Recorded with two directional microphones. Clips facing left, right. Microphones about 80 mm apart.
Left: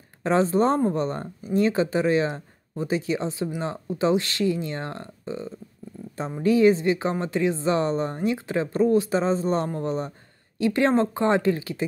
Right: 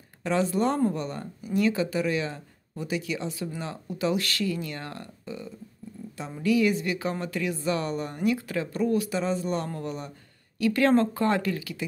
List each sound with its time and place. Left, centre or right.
0.2 s speech: left